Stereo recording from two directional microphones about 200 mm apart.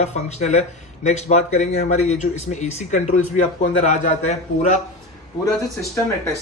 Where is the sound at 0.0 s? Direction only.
35° left (ahead or behind).